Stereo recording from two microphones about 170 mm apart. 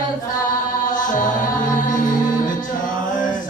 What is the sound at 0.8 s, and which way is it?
Music, 50° left (ahead or behind).